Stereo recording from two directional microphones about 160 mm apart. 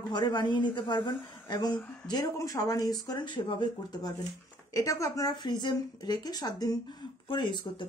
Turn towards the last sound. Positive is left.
turn(degrees=30)  # may be behind; listen again after turning